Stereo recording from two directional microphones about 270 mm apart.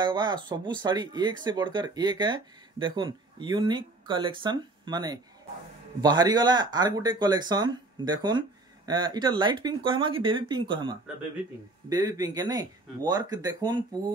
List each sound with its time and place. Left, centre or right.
0.0 s speech: centre